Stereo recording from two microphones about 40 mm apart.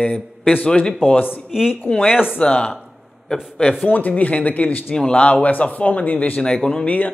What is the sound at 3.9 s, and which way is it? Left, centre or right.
Speech, left.